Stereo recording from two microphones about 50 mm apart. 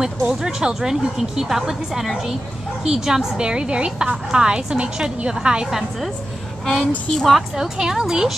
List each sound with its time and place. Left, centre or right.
0.3 s a woman's voice: centre
5.7 s a woman's voice: centre
6.6 s a woman's voice: centre
7.5 s a woman's voice: centre